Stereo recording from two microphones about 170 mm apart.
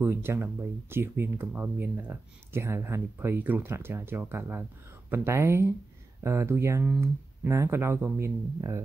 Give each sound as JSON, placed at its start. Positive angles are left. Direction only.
{"t": 0.0, "sound": "speech", "side_deg": -15}